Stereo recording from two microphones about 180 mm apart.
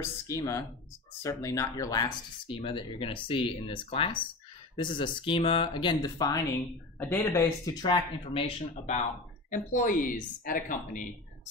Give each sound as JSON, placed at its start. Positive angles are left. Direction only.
{"t": 0.0, "sound": "speech", "side_deg": 15}